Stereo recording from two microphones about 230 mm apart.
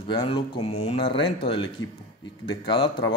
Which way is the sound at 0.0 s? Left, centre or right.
Left.